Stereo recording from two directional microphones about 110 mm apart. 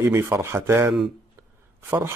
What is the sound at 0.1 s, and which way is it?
Speech, 25° right (ahead or behind).